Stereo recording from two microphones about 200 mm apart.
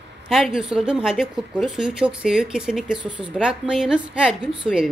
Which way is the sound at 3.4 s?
5° right (ahead or behind).